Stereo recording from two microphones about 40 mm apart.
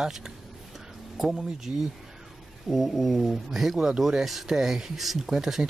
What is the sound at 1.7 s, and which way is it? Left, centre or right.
Speech, right.